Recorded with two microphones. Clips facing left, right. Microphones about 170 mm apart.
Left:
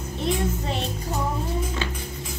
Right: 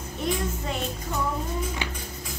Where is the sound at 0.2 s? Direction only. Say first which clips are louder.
Left 3 dB; 30° left (ahead or behind).